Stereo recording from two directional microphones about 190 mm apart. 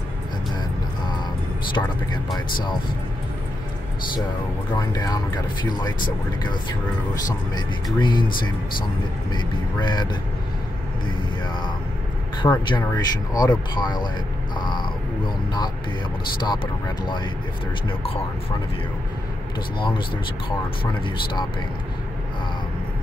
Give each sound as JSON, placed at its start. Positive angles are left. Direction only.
{"t": 1.8, "sound": "speech", "side_deg": 15}
{"t": 4.7, "sound": "speech", "side_deg": 20}
{"t": 7.5, "sound": "speech", "side_deg": 25}
{"t": 9.3, "sound": "speech", "side_deg": 25}
{"t": 12.4, "sound": "speech", "side_deg": 25}
{"t": 14.6, "sound": "a sound", "side_deg": 25}
{"t": 17.0, "sound": "speech", "side_deg": 25}
{"t": 20.4, "sound": "speech", "side_deg": 25}